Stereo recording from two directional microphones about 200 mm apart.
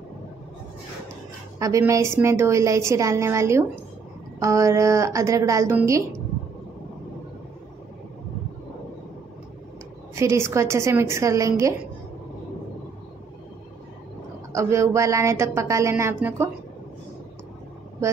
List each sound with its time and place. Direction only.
1.6 s a woman's voice: 15° right (ahead or behind)
10.1 s a woman's voice: 15° right (ahead or behind)
14.5 s a woman's voice: 15° right (ahead or behind)